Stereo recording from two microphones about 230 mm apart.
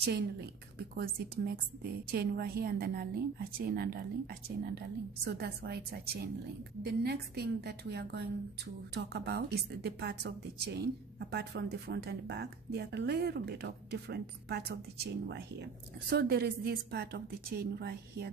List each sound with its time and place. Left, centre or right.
0.0 s a woman's voice: right